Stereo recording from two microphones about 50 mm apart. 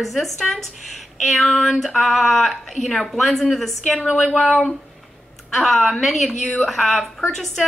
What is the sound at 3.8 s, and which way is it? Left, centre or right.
A woman's voice, centre.